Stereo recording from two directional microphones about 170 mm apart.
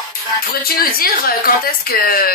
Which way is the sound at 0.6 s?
60° left (ahead or behind).